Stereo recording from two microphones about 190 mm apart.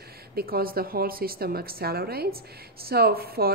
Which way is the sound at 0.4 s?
50° right (ahead or behind).